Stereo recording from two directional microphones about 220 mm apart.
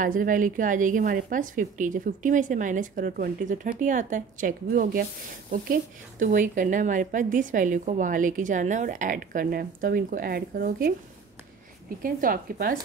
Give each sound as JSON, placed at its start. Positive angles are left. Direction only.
{"t": 0.0, "sound": "a woman's voice", "side_deg": -40}
{"t": 12.0, "sound": "a woman's voice", "side_deg": -40}